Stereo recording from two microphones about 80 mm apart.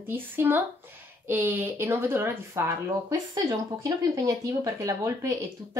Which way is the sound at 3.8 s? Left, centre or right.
Right.